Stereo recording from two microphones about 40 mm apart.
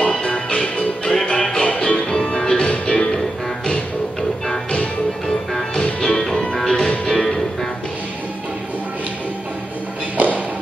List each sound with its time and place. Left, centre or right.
0.0 s music: left
5.5 s music: centre
5.9 s music: centre
10.1 s music: right